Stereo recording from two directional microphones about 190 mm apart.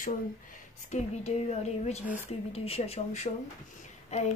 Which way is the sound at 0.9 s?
35° left (ahead or behind).